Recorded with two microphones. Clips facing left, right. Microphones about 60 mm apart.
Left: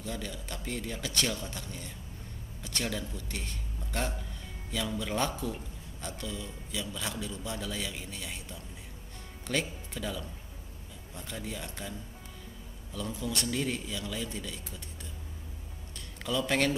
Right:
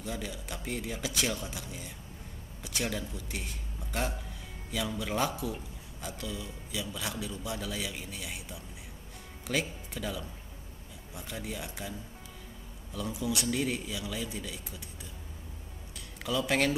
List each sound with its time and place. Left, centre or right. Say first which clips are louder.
0.0 s a man's voice: even; centre
12.9 s speech: right 2 dB; centre
16.3 s a man's voice: even; centre